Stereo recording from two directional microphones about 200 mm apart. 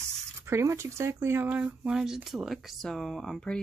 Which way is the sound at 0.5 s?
15° right (ahead or behind).